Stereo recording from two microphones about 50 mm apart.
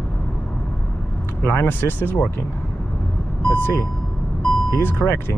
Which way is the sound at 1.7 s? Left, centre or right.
Left.